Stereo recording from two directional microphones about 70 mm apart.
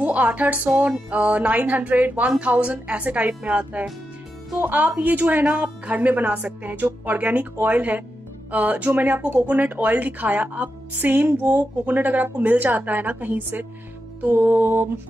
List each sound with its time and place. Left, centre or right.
0.0 s a woman's voice: right
14.2 s music: right